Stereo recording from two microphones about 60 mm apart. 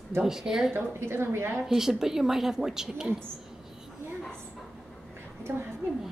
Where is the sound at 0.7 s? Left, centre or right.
Right.